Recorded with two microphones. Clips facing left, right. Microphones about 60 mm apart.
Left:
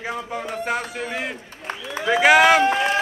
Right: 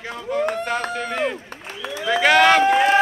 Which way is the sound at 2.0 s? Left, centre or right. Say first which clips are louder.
Left 1 dB; centre.